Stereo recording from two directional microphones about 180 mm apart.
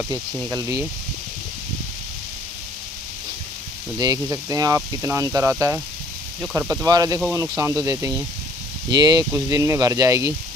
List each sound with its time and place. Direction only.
0.5 s speech: 20° right (ahead or behind)
4.0 s speech: 20° right (ahead or behind)
6.7 s speech: 20° right (ahead or behind)